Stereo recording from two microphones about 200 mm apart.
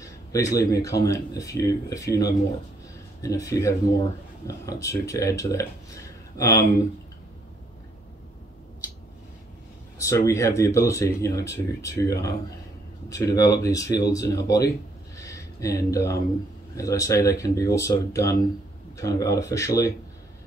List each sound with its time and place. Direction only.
0.0 s speech: 15° left (ahead or behind)
9.9 s speech: 15° left (ahead or behind)
15.1 s a sound: 15° left (ahead or behind)
16.7 s speech: 15° left (ahead or behind)